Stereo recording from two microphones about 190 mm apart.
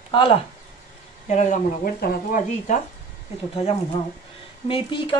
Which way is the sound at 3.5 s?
30° left (ahead or behind).